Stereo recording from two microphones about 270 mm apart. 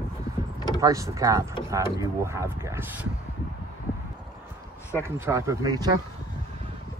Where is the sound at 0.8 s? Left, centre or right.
Centre.